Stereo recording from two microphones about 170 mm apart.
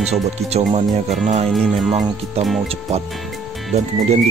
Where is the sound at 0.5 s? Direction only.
40° right (ahead or behind).